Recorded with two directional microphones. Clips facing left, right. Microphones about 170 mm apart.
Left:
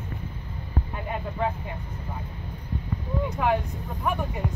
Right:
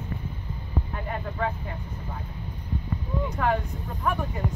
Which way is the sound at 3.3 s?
10° left (ahead or behind).